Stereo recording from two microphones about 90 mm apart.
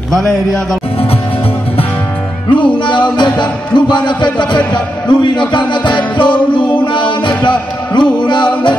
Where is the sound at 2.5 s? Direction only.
60° left (ahead or behind).